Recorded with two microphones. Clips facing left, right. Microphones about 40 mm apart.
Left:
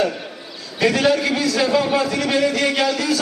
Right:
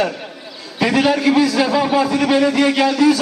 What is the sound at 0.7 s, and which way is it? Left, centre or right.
A man's voice, centre.